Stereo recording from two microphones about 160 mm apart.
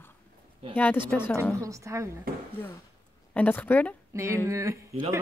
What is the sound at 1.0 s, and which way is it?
Speech, 15° left (ahead or behind).